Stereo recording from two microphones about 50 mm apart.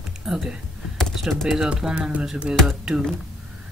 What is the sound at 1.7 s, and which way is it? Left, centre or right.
Speech, centre.